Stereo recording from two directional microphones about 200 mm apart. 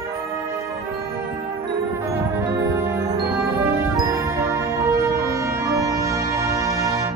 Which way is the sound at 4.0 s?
15° right (ahead or behind).